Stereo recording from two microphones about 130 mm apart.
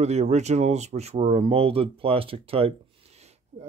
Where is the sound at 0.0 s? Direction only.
60° right (ahead or behind).